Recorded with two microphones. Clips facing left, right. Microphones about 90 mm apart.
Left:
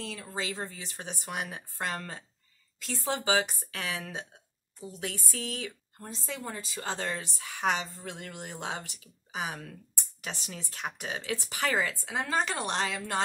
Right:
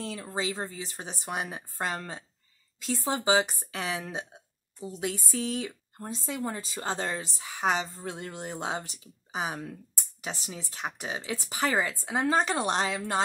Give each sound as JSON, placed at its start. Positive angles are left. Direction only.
{"t": 0.0, "sound": "speech", "side_deg": -25}
{"t": 6.1, "sound": "speech", "side_deg": -20}
{"t": 8.1, "sound": "speech", "side_deg": -25}
{"t": 10.2, "sound": "speech", "side_deg": -10}